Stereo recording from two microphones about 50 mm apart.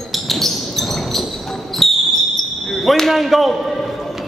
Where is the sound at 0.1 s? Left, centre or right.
Centre.